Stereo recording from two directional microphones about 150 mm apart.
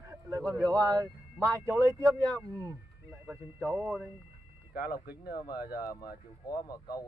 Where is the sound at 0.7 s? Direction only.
25° right (ahead or behind).